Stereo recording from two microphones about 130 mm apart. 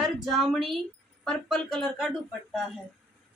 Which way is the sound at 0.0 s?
Centre (ahead or behind).